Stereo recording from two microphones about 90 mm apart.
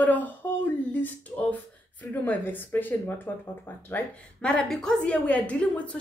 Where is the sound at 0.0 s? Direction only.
20° left (ahead or behind).